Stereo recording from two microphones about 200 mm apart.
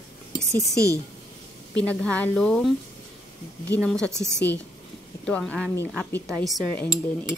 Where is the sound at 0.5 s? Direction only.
15° right (ahead or behind).